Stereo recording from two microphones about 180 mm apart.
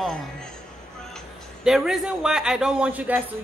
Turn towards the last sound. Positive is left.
turn(degrees=-10)  # may be behind; listen again after turning